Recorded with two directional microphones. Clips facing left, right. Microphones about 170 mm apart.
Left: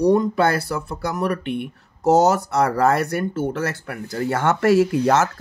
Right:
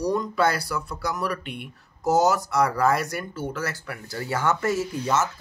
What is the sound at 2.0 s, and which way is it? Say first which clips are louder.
Speech: left 5 dB; 65° left (ahead or behind).